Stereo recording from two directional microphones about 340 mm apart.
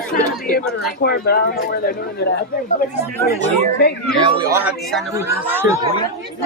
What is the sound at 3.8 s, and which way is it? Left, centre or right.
Speech, left.